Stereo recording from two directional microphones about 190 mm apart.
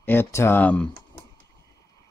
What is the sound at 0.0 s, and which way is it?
Speech, 10° left (ahead or behind).